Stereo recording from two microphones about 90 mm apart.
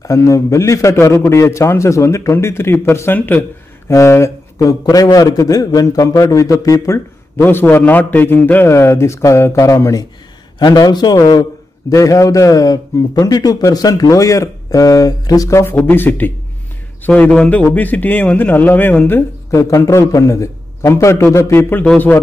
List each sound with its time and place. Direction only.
0.0 s a man's voice: 35° left (ahead or behind); by 3.4 s 20° left (ahead or behind)
3.9 s speech: 30° left (ahead or behind)
4.8 s a man's voice: 45° left (ahead or behind)
7.4 s a man's voice: 25° left (ahead or behind)
10.6 s a man's voice: 50° left (ahead or behind)
15.6 s a man's voice: 25° left (ahead or behind)
17.1 s a man's voice: 10° left (ahead or behind)
17.7 s a man's voice: 20° left (ahead or behind)
19.5 s a man's voice: 35° left (ahead or behind)